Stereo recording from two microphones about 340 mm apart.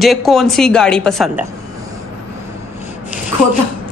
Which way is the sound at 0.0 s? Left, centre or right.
Centre.